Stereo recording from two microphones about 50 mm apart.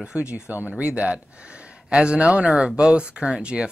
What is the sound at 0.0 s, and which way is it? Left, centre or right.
Speech, centre.